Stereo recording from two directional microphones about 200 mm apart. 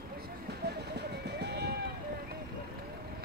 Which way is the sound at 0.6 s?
55° right (ahead or behind).